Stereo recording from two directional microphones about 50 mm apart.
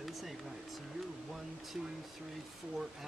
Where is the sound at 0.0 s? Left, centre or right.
Centre.